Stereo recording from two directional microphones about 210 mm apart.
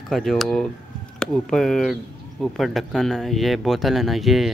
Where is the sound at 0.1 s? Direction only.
Centre (ahead or behind).